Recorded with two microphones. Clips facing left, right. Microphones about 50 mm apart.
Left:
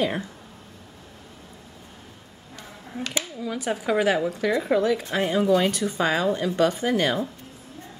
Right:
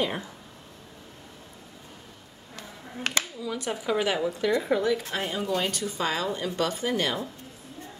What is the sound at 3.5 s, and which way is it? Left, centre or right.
Speech, centre.